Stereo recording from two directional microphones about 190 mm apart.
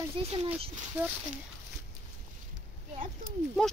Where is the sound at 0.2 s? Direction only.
25° right (ahead or behind).